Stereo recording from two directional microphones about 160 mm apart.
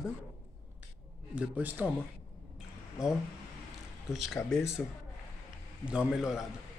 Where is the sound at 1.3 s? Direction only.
10° right (ahead or behind).